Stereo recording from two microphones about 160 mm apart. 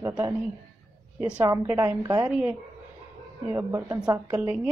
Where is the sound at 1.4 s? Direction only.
15° right (ahead or behind).